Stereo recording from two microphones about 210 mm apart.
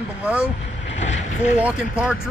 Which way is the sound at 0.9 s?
35° left (ahead or behind).